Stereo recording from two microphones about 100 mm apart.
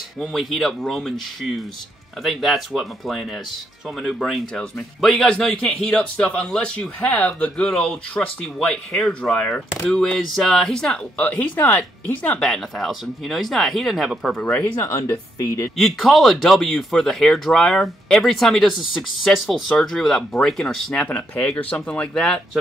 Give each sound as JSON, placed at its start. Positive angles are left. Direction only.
{"t": 0.2, "sound": "speech", "side_deg": 0}
{"t": 12.4, "sound": "speech", "side_deg": 5}
{"t": 14.3, "sound": "speech", "side_deg": 15}
{"t": 14.8, "sound": "speech", "side_deg": 30}
{"t": 15.7, "sound": "speech", "side_deg": 0}